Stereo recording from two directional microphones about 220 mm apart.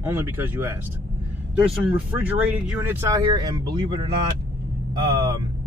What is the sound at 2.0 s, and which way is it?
Speech, 10° right (ahead or behind).